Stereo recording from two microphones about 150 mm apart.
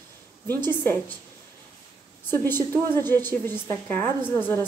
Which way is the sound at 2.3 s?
15° left (ahead or behind).